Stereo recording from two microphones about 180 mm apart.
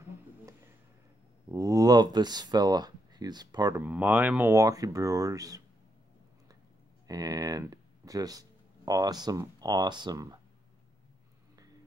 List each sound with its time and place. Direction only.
1.5 s speech: 15° right (ahead or behind)
3.8 s speech: 10° right (ahead or behind)
7.1 s speech: 20° right (ahead or behind)